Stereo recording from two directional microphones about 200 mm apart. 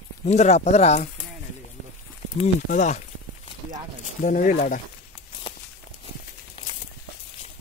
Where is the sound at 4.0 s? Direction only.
40° left (ahead or behind).